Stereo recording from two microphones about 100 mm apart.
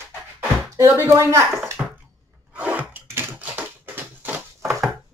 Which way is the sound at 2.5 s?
15° right (ahead or behind).